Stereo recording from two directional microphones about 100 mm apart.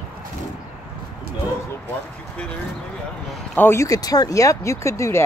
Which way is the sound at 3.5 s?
20° left (ahead or behind).